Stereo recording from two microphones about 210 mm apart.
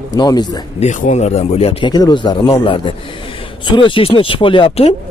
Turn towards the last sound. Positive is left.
turn(degrees=25)  # may be behind; listen again after turning